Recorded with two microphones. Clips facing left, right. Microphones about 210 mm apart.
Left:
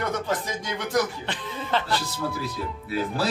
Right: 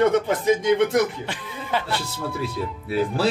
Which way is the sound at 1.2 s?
10° right (ahead or behind).